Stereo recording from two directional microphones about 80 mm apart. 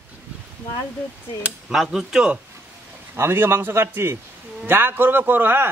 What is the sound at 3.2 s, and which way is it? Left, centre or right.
A man's voice, right.